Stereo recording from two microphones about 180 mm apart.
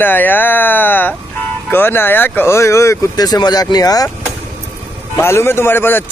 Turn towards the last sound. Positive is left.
turn(degrees=10)  # may be behind; listen again after turning